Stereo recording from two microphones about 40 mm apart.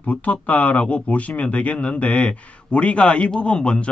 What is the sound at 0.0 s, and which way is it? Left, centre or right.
Speech, left.